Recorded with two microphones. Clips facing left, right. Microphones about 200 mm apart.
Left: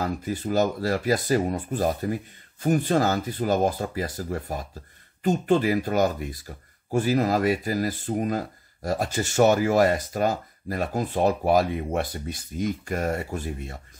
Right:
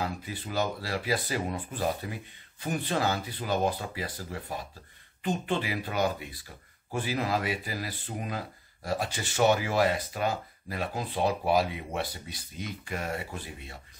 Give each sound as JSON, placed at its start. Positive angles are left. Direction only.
{"t": 0.0, "sound": "speech", "side_deg": 45}